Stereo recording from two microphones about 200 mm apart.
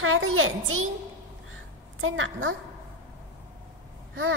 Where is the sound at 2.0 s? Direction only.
90° right.